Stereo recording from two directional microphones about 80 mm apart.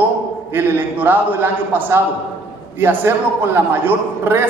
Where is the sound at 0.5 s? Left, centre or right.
Right.